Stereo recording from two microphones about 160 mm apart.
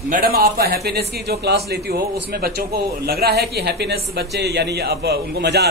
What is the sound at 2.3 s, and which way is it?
Speech, 75° right (ahead or behind).